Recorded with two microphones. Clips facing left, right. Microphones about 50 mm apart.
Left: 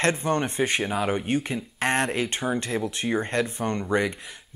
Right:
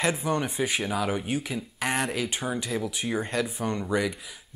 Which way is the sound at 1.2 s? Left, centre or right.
Left.